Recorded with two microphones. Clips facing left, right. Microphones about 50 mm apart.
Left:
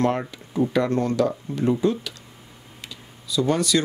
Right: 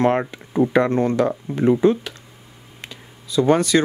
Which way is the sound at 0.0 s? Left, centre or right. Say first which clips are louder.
Right 4 dB; right.